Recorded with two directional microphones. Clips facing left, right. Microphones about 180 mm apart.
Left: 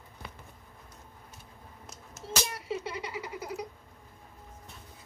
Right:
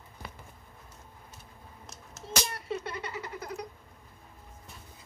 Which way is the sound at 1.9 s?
10° left (ahead or behind).